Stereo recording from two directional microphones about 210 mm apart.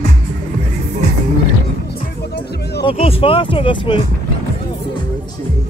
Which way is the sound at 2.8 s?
25° left (ahead or behind).